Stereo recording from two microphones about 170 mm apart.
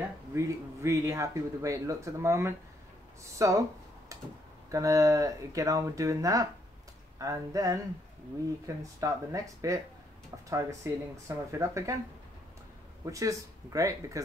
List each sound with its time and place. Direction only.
0.3 s speech: 15° right (ahead or behind)
4.6 s speech: 20° right (ahead or behind)
13.0 s speech: 20° right (ahead or behind)